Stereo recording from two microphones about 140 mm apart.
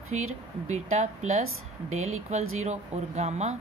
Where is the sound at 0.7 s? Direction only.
55° right (ahead or behind).